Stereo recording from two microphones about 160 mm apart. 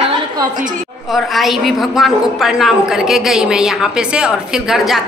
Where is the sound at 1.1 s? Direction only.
Centre (ahead or behind).